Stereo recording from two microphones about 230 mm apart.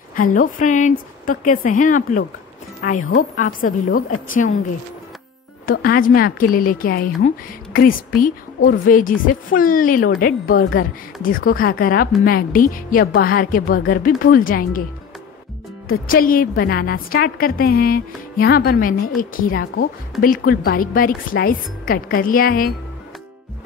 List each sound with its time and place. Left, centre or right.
0.1 s a woman's voice: left
5.7 s a woman's voice: left
15.9 s a woman's voice: left